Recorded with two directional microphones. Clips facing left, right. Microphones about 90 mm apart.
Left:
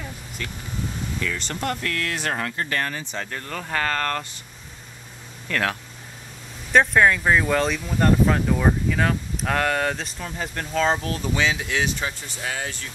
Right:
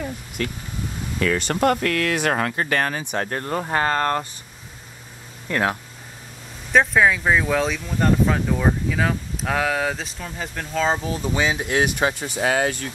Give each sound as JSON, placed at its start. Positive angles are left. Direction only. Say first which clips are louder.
{"t": 1.2, "sound": "speech", "louder": "right 10 dB", "side_deg": -60}
{"t": 3.3, "sound": "speech", "louder": "right 6 dB", "side_deg": -35}
{"t": 5.5, "sound": "speech", "louder": "right 3 dB", "side_deg": -20}
{"t": 6.7, "sound": "speech", "louder": "even", "side_deg": 0}
{"t": 11.5, "sound": "speech", "louder": "right 4 dB", "side_deg": -50}
{"t": 12.4, "sound": "speech", "louder": "right 9 dB", "side_deg": -70}